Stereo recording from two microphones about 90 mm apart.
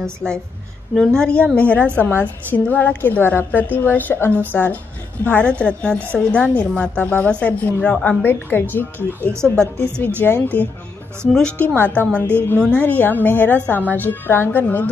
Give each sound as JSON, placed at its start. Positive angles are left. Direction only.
{"t": 0.2, "sound": "a woman's voice", "side_deg": 10}
{"t": 0.9, "sound": "a woman's voice", "side_deg": 0}
{"t": 1.2, "sound": "a woman's voice", "side_deg": 10}
{"t": 9.8, "sound": "a woman's voice", "side_deg": 10}
{"t": 10.2, "sound": "a woman's voice", "side_deg": 25}